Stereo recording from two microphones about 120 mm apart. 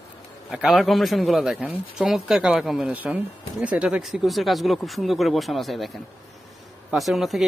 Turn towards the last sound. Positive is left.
turn(degrees=0)  # may be behind; listen again after turning